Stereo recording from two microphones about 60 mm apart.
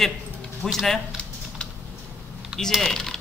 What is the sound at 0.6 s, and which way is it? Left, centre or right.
Speech, centre.